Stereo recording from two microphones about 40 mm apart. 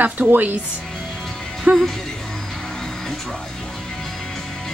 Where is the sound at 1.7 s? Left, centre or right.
Right.